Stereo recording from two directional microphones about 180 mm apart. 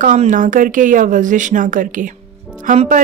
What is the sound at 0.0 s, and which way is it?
A woman's voice, 45° right (ahead or behind).